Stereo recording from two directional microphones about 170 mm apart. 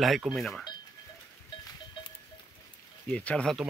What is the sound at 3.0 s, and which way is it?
Speech, 10° left (ahead or behind).